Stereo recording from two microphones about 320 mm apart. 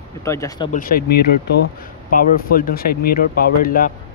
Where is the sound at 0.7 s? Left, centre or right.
Left.